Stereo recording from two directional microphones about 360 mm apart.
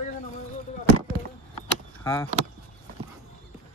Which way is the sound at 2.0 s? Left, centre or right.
Centre.